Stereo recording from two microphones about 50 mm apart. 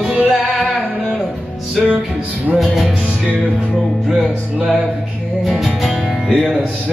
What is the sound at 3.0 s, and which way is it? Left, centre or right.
Music, right.